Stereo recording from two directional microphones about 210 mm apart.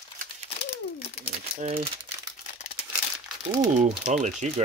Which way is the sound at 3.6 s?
35° right (ahead or behind).